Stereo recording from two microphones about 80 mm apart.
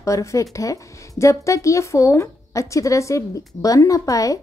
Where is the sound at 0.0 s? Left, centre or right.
Left.